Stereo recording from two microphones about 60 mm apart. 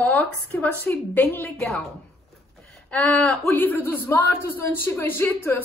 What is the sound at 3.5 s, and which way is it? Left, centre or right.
A man's voice, left.